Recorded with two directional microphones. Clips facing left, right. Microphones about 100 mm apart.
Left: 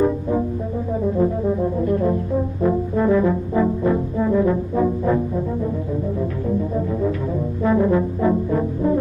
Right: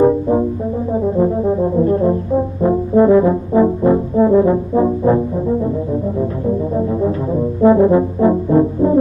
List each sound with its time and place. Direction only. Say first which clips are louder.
1.1 s brass instrument: right 4 dB; 30° right (ahead or behind)
6.9 s brass instrument: right 5 dB; 30° right (ahead or behind)